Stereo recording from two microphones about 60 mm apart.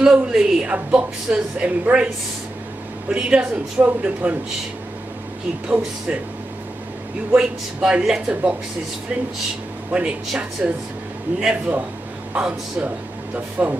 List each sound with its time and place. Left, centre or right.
0.0 s speech: centre
3.1 s speech: centre
5.7 s speech: centre
7.3 s speech: centre
9.9 s speech: centre